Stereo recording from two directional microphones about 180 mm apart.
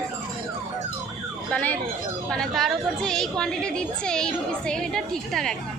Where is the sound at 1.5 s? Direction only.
10° left (ahead or behind).